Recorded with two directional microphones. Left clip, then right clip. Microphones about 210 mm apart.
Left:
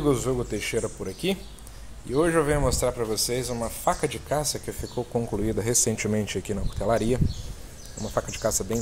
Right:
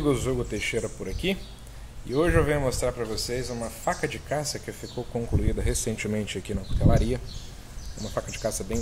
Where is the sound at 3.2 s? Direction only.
35° left (ahead or behind).